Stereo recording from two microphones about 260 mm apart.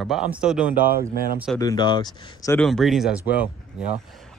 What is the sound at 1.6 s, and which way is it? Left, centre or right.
A man's voice, centre.